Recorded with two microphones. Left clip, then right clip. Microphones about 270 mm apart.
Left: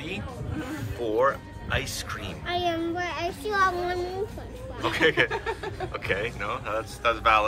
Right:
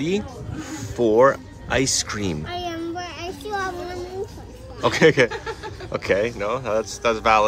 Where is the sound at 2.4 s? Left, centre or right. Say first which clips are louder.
Left 1 dB; centre.